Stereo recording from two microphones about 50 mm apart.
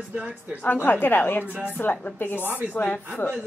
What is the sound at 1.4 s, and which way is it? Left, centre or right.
Speech, right.